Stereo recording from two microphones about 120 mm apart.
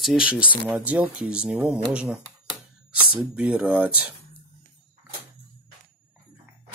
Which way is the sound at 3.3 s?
10° right (ahead or behind).